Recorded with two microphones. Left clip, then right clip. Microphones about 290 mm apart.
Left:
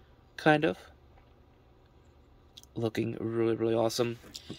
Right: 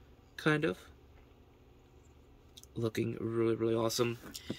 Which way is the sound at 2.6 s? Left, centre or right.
Centre.